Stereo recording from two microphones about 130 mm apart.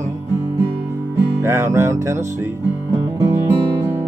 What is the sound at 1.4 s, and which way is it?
Music, 20° right (ahead or behind).